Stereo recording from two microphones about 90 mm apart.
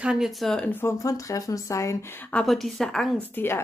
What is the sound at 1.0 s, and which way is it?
Speech, 40° left (ahead or behind).